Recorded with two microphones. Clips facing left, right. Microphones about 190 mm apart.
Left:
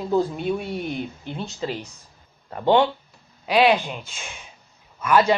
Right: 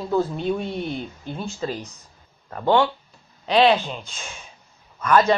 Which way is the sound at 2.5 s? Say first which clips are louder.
Left 1 dB; 20° left (ahead or behind).